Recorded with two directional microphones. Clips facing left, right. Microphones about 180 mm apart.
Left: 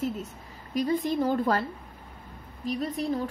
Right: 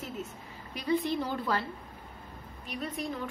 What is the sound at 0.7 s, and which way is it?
Speech, 45° left (ahead or behind).